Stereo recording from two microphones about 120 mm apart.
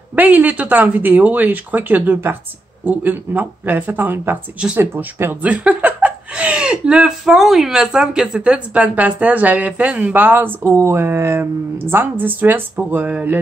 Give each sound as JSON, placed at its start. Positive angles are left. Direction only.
{"t": 0.1, "sound": "speech", "side_deg": -15}